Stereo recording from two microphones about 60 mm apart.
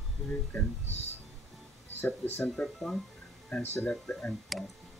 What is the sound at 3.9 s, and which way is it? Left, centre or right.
Speech, centre.